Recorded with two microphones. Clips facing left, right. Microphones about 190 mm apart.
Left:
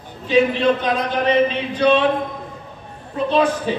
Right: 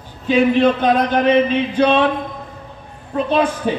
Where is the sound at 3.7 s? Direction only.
50° right (ahead or behind).